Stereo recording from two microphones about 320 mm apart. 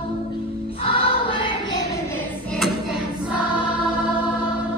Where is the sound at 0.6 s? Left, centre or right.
Centre.